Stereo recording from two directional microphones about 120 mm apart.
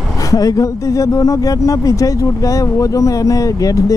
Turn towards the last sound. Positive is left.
turn(degrees=30)  # may be behind; listen again after turning